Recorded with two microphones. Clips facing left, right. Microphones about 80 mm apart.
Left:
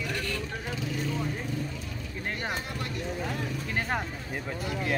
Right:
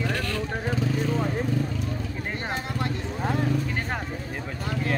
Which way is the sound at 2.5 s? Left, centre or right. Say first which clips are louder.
Right 5 dB; right.